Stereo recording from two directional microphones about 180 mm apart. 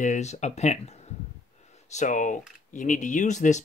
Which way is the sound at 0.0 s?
40° left (ahead or behind).